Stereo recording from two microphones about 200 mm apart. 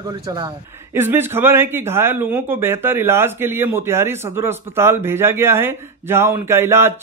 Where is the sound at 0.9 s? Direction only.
10° right (ahead or behind).